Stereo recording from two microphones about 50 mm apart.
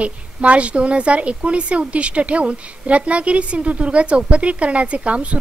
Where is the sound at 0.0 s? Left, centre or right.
Right.